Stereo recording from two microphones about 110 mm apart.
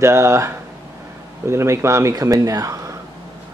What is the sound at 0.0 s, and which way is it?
Speech, 25° right (ahead or behind).